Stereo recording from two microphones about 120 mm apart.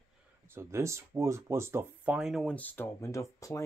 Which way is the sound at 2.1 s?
Centre (ahead or behind).